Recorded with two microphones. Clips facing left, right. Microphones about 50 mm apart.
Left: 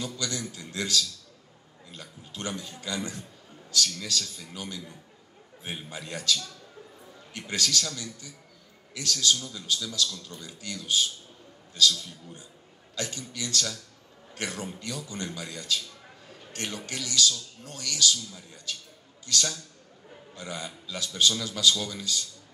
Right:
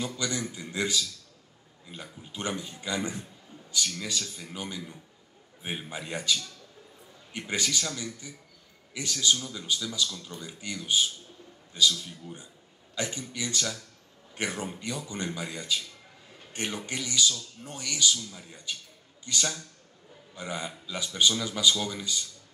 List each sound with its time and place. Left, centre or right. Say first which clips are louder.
0.0 s a man's voice: right 2 dB; right